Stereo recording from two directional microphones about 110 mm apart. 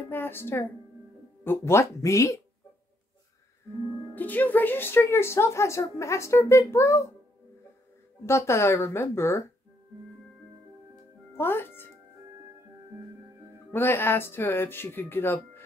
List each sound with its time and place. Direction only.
0.1 s speech: 20° left (ahead or behind)
4.1 s speech: 15° left (ahead or behind)
8.3 s speech: 25° left (ahead or behind)
11.3 s speech: 20° left (ahead or behind)
13.7 s speech: 20° left (ahead or behind)